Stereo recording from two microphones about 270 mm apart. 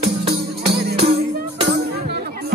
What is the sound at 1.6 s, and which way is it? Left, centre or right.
Music, right.